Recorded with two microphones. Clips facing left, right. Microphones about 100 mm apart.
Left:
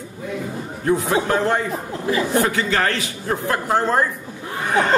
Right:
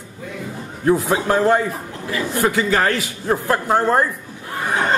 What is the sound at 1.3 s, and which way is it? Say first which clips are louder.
A man's voice: right 3 dB; 10° right (ahead or behind).